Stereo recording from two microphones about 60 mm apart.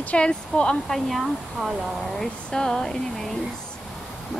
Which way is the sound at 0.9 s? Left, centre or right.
Centre.